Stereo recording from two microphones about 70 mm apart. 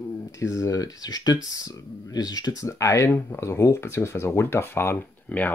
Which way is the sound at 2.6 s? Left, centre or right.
Left.